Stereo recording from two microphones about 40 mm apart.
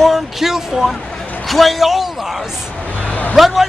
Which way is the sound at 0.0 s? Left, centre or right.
Centre.